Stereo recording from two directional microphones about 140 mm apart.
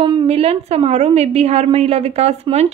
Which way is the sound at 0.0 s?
40° right (ahead or behind).